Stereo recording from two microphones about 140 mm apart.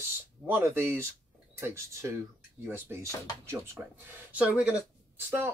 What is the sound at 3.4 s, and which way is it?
Speech, 20° right (ahead or behind).